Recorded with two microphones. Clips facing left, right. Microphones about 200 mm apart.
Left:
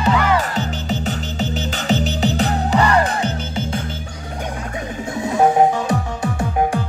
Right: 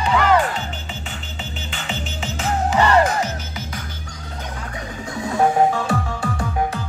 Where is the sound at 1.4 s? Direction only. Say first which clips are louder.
Left 9 dB; 40° left (ahead or behind).